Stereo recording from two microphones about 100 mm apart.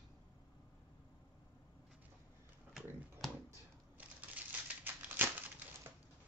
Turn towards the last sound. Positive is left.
turn(degrees=-20)  # may be behind; listen again after turning